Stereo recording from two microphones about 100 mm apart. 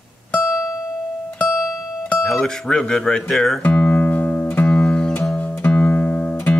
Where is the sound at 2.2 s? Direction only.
5° left (ahead or behind).